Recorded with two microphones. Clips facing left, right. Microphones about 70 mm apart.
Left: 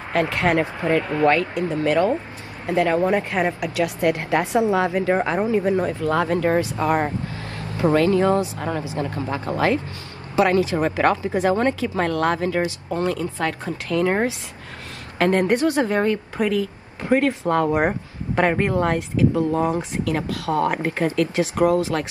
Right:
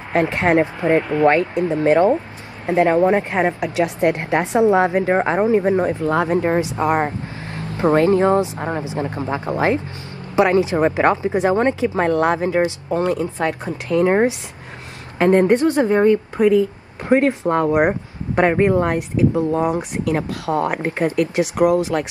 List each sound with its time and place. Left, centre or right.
0.1 s speech: right
15.1 s speech: right